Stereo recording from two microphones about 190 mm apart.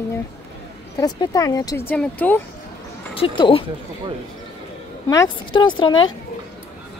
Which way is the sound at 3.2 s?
25° left (ahead or behind).